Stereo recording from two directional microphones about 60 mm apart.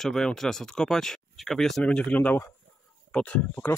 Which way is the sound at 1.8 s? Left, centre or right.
Centre.